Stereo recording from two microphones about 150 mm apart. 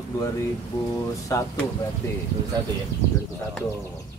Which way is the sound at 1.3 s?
20° left (ahead or behind).